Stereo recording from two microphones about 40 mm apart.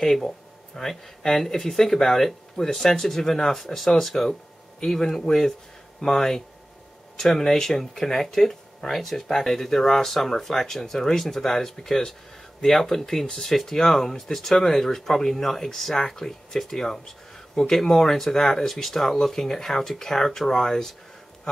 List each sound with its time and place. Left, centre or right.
0.0 s speech: centre
4.3 s a sound: centre
4.9 s speech: centre